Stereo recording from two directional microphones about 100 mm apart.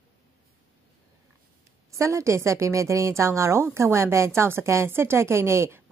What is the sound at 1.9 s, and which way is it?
A woman's voice, 30° right (ahead or behind).